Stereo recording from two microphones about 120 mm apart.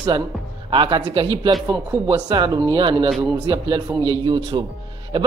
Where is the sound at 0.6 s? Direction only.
40° right (ahead or behind).